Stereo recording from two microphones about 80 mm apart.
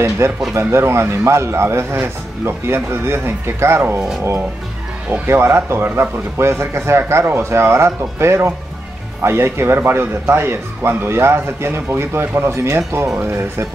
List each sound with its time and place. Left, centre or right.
0.5 s speech: right
5.1 s speech: right